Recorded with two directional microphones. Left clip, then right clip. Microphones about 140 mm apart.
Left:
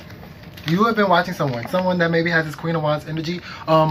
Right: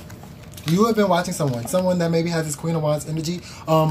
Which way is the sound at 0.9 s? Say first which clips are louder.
Left 2 dB; 45° right (ahead or behind).